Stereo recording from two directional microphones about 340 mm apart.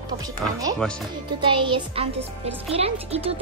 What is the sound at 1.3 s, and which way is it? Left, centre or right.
A child's voice, centre.